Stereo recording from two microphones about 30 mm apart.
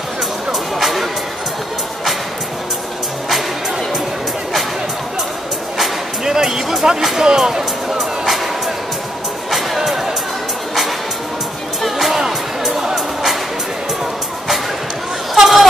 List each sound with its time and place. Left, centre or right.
0.5 s music: centre
6.2 s music: centre
7.2 s speech: centre
12.1 s music: centre
15.3 s a sound: centre